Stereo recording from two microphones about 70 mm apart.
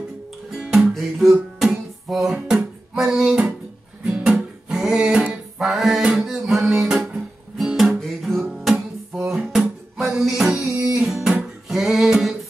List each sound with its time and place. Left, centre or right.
0.5 s music: centre
2.0 s a sound: centre
4.0 s music: centre
5.6 s music: centre
7.5 s guitar: centre
8.0 s music: centre